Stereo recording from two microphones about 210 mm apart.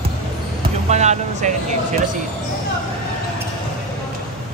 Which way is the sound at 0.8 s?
35° right (ahead or behind).